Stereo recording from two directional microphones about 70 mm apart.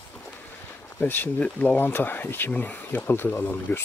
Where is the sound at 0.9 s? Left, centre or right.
Left.